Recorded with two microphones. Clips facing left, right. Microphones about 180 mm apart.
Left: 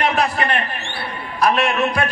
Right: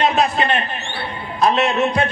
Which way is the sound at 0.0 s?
20° right (ahead or behind).